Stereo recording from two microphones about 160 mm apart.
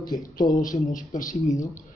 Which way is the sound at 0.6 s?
55° left (ahead or behind).